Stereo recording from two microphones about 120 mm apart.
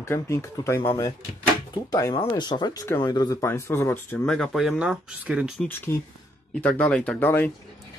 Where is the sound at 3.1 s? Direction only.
35° left (ahead or behind).